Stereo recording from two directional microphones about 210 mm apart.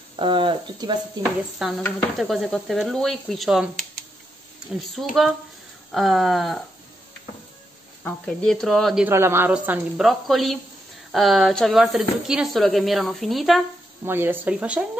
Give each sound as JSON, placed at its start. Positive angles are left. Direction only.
{"t": 0.1, "sound": "speech", "side_deg": -25}
{"t": 1.6, "sound": "speech", "side_deg": 0}
{"t": 5.0, "sound": "speech", "side_deg": 0}
{"t": 8.0, "sound": "speech", "side_deg": 5}
{"t": 9.1, "sound": "speech", "side_deg": -10}
{"t": 14.0, "sound": "speech", "side_deg": -10}